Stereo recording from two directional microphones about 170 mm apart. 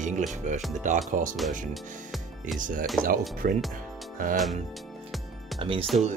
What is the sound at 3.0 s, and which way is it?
Speech, 55° right (ahead or behind).